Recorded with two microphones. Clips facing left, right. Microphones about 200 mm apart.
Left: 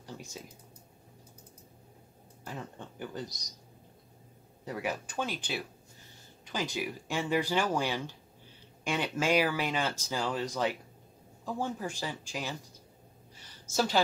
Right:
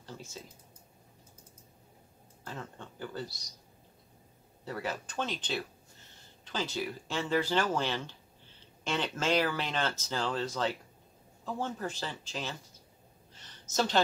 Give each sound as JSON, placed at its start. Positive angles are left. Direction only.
{"t": 0.0, "sound": "computer keyboard", "side_deg": 15}
{"t": 2.4, "sound": "speech", "side_deg": 15}
{"t": 4.6, "sound": "speech", "side_deg": 15}
{"t": 13.3, "sound": "a sound", "side_deg": 10}